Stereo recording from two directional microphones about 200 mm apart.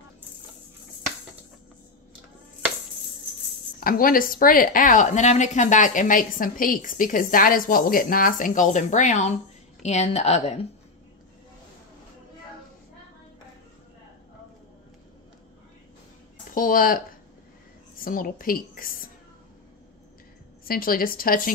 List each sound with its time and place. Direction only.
3.8 s a woman's voice: 45° left (ahead or behind)
16.4 s a woman's voice: 45° left (ahead or behind)
20.6 s a woman's voice: 45° left (ahead or behind)